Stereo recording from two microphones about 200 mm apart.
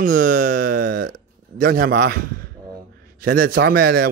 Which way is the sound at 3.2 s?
45° right (ahead or behind).